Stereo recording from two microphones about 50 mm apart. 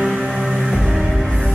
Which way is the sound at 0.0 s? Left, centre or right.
Centre.